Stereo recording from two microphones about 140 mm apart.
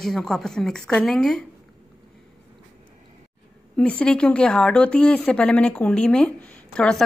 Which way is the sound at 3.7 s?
10° left (ahead or behind).